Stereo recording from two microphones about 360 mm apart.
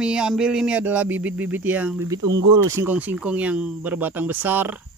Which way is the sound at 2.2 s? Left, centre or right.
Right.